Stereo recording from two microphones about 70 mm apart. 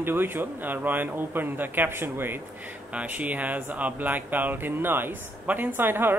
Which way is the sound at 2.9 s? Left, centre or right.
Right.